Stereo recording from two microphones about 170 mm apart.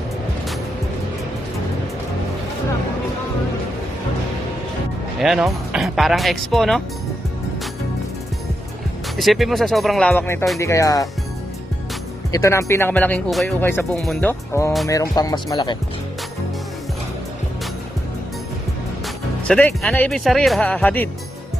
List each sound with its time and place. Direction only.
5.2 s speech: centre (ahead or behind)
9.1 s speech: centre (ahead or behind); by 11.1 s 20° left (ahead or behind)
12.3 s speech: 20° left (ahead or behind)
13.3 s speech: centre (ahead or behind)
13.6 s speech: 15° left (ahead or behind)
14.0 s speech: centre (ahead or behind)
14.5 s speech: 20° left (ahead or behind)
19.4 s speech: 5° left (ahead or behind)